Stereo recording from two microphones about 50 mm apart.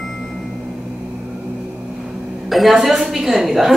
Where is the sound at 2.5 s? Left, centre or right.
Centre.